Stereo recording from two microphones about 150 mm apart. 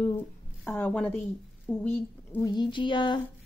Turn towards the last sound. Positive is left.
turn(degrees=30)  # may be behind; listen again after turning